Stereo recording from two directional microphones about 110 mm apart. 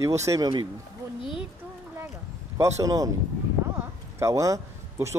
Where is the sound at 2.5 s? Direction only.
30° right (ahead or behind).